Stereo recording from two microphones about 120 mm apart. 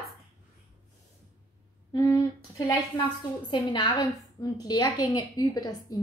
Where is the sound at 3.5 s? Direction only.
40° left (ahead or behind).